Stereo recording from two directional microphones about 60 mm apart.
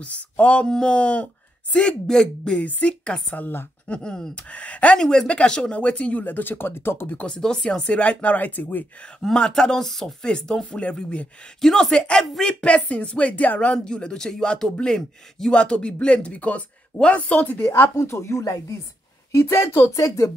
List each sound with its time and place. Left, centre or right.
0.0 s speech: left
3.4 s speech: left
3.9 s speech: centre
4.5 s speech: left
4.9 s speech: centre; by 7.2 s left
7.2 s speech: centre
8.0 s speech: left
9.2 s speech: centre
11.6 s speech: centre
17.6 s speech: left
20.0 s speech: left